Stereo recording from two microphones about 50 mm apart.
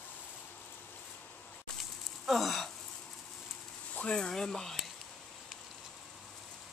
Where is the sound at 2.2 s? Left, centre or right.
Centre.